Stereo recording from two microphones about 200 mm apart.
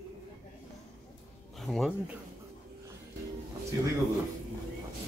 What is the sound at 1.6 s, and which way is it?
Speech, centre (ahead or behind).